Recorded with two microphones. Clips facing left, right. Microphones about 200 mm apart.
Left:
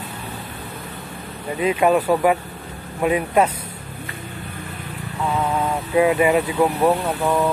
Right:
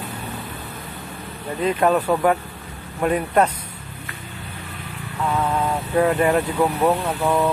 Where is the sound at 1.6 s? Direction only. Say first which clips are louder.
Left 1 dB; 10° left (ahead or behind).